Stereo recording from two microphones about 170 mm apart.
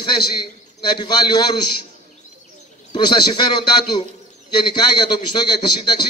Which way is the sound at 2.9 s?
25° left (ahead or behind).